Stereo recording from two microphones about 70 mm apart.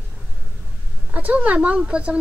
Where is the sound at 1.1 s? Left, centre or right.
Right.